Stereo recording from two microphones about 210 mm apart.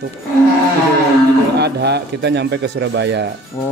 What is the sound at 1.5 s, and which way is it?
Speech, 50° right (ahead or behind).